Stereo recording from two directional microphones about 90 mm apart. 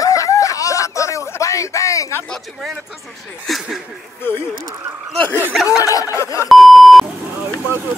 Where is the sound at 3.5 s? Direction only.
5° left (ahead or behind).